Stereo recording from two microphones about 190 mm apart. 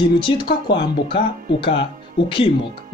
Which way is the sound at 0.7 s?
25° left (ahead or behind).